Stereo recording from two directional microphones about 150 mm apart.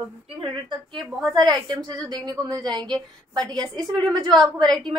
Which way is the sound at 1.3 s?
30° right (ahead or behind).